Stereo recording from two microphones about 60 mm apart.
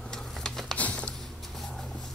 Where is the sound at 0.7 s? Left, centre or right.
Left.